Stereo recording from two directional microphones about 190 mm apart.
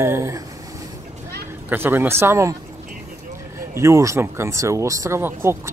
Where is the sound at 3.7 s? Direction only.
15° right (ahead or behind).